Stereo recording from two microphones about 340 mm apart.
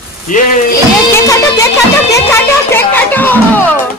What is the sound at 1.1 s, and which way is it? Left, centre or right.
Music, centre.